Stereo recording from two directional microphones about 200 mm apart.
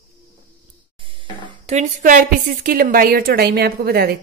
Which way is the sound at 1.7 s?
35° right (ahead or behind).